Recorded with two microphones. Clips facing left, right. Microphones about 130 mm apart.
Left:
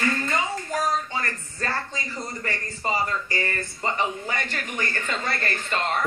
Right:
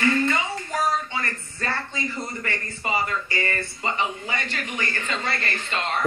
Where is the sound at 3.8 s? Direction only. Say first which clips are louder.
Left 1 dB; 45° left (ahead or behind).